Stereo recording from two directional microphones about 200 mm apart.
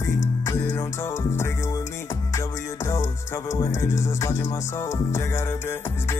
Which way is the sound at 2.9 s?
15° left (ahead or behind).